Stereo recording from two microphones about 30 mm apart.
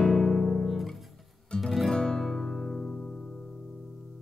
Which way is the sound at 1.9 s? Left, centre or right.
Left.